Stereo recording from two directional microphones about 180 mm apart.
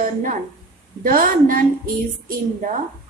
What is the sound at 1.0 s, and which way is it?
Speech, 50° right (ahead or behind).